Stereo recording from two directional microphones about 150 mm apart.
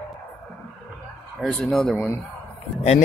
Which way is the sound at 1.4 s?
5° left (ahead or behind).